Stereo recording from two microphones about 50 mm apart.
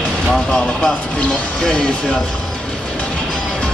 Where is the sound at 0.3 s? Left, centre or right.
Centre.